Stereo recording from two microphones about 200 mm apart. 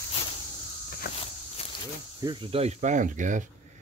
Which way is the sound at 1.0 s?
55° left (ahead or behind).